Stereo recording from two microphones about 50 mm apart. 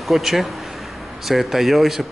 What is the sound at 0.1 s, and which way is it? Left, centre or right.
Speech, centre.